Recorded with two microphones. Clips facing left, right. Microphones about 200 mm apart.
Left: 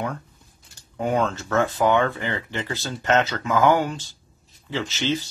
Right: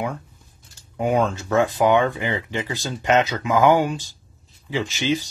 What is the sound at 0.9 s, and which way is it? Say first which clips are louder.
Speech: right 2 dB; 15° right (ahead or behind).